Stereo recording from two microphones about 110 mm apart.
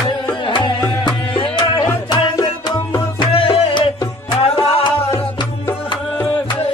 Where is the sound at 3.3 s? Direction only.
55° left (ahead or behind).